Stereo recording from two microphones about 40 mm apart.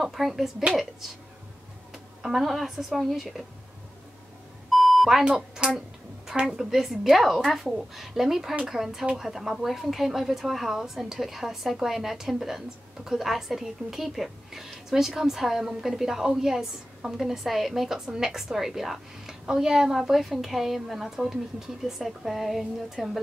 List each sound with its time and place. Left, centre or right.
0.0 s a woman's voice: centre
2.2 s a woman's voice: centre
4.7 s beep: centre
5.2 s a woman's voice: centre
6.6 s a woman's voice: centre